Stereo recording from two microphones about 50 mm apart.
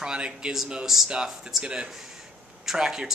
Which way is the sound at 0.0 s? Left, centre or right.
Centre.